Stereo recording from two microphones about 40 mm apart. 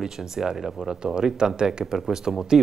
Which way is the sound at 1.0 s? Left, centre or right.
Centre.